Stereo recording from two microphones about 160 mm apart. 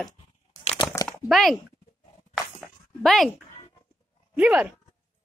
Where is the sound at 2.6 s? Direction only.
Centre (ahead or behind).